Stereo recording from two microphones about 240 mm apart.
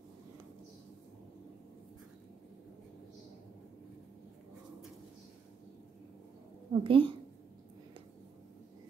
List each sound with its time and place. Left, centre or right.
6.7 s a woman's voice: right